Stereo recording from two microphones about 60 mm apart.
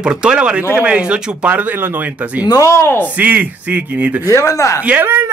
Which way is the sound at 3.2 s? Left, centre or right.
Right.